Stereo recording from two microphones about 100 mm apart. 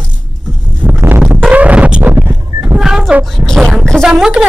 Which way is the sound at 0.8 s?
20° right (ahead or behind).